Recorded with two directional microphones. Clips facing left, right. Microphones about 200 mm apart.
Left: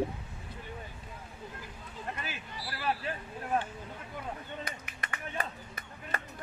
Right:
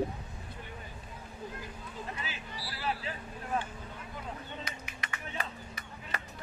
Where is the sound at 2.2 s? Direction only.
50° left (ahead or behind).